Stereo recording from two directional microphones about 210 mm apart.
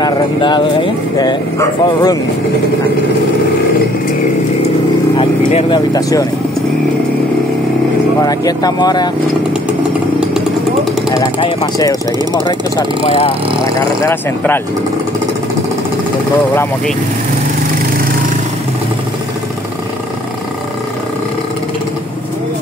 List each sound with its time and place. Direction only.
0.0 s speech: 20° left (ahead or behind)
5.5 s speech: 30° left (ahead or behind)
5.9 s speech: 15° left (ahead or behind)
8.2 s speech: 15° left (ahead or behind)
11.6 s speech: 15° left (ahead or behind)